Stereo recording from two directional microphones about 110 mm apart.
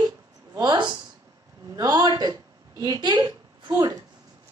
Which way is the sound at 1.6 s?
35° right (ahead or behind).